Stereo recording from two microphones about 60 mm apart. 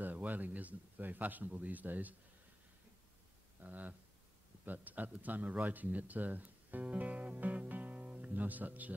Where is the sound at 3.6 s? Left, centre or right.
Right.